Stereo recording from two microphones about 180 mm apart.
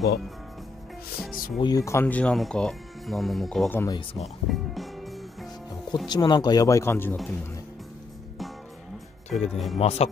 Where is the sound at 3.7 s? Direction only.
15° left (ahead or behind).